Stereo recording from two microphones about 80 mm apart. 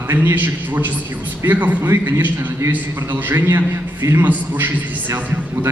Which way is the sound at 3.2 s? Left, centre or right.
Right.